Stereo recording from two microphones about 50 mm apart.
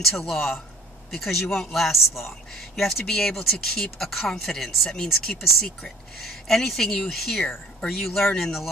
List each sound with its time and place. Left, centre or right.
0.0 s a man's voice: centre